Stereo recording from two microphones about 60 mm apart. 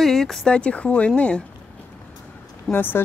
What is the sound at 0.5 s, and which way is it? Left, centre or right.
Speech, centre.